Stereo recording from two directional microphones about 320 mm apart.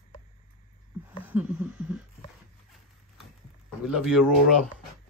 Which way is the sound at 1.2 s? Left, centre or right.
Centre.